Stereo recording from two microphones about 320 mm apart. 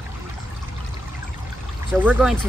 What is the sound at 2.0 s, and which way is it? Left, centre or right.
Speech, centre.